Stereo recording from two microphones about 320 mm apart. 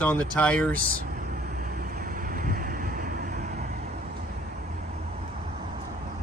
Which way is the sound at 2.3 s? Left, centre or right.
Right.